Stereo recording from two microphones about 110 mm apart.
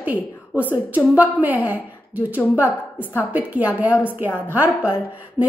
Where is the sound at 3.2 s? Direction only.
15° right (ahead or behind).